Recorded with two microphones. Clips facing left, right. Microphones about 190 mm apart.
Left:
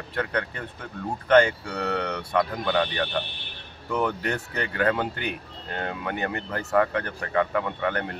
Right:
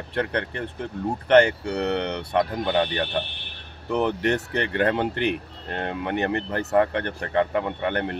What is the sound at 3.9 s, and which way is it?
Speech, 30° right (ahead or behind).